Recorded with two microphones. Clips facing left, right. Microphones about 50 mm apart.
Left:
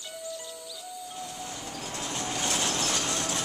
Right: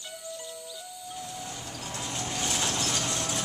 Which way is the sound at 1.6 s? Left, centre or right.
Centre.